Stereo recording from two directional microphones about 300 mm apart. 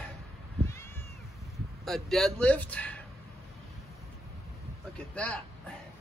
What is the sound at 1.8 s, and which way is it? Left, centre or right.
Speech, centre.